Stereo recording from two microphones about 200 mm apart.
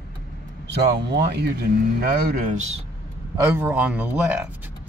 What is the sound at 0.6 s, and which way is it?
Speech, 55° right (ahead or behind).